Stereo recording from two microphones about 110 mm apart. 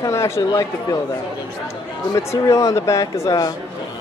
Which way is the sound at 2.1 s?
30° left (ahead or behind).